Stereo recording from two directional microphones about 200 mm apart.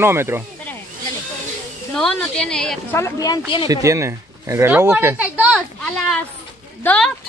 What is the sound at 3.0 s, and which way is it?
Speech, 20° left (ahead or behind).